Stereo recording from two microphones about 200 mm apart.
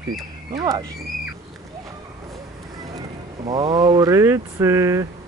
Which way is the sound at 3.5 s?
20° right (ahead or behind).